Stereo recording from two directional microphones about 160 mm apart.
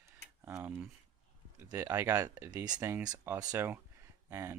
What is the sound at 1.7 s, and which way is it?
Speech, 15° right (ahead or behind).